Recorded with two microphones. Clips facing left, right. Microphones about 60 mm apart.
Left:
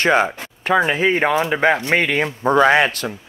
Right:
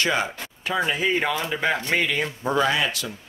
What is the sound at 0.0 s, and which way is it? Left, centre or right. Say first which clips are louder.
Speech: left 8 dB; left.